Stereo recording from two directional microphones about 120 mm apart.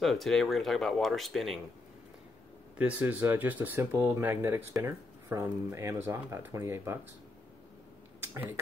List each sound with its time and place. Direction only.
0.0 s speech: centre (ahead or behind)
2.8 s speech: 15° right (ahead or behind)